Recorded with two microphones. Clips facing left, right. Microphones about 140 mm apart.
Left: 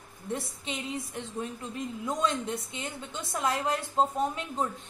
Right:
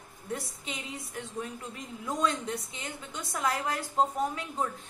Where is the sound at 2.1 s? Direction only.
25° left (ahead or behind).